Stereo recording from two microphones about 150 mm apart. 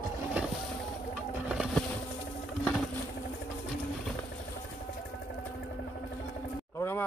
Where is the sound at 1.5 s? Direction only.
5° right (ahead or behind).